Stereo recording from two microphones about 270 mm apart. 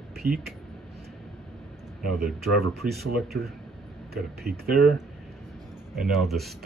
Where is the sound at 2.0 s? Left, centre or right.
Right.